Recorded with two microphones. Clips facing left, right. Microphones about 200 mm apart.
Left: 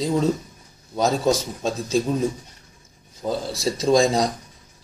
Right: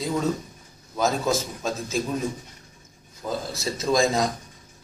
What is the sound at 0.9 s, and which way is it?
Speech, 30° left (ahead or behind).